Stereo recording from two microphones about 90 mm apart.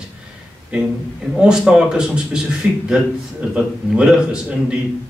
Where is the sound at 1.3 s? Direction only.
10° right (ahead or behind).